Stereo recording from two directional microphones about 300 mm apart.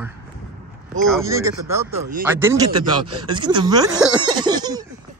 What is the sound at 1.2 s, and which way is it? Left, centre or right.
A man's voice, centre.